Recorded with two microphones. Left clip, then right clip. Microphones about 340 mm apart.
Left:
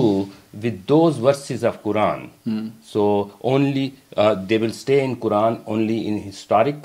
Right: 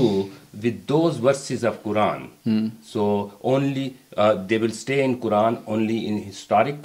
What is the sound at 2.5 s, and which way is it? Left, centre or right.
Speech, right.